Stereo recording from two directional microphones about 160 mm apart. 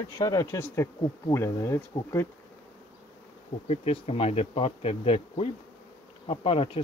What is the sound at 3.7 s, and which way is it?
Bee, 40° left (ahead or behind).